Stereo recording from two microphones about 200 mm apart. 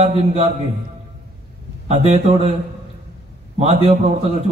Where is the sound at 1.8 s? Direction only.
35° right (ahead or behind).